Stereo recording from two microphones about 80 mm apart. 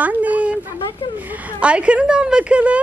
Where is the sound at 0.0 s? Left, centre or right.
Centre.